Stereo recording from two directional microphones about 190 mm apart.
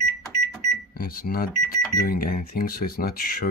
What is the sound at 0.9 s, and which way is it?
Speech, 50° left (ahead or behind).